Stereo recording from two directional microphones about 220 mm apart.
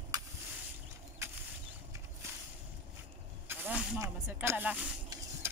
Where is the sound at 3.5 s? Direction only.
5° right (ahead or behind).